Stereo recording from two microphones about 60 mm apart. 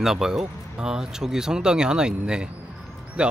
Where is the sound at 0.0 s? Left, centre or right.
Centre.